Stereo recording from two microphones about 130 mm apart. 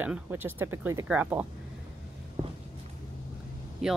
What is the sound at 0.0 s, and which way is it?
A woman's voice, 15° right (ahead or behind).